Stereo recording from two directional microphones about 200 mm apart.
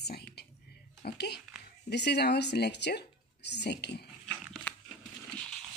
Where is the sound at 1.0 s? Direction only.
55° left (ahead or behind).